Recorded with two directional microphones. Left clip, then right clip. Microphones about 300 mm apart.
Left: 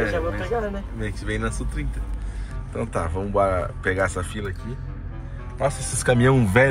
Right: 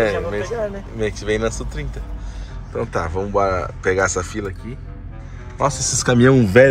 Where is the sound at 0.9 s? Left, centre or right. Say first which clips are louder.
Right 9 dB; centre.